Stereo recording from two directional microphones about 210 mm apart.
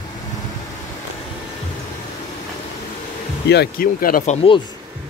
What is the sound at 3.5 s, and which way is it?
Speech, 45° left (ahead or behind).